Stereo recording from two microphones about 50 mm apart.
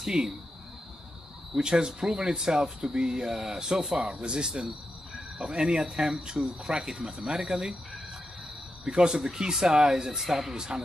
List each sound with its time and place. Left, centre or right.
0.0 s speech: centre
1.5 s speech: centre
8.8 s speech: centre